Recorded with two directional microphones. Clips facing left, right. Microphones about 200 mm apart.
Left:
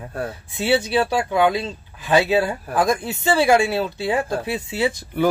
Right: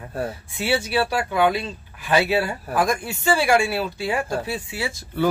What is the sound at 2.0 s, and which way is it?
Speech, 20° left (ahead or behind).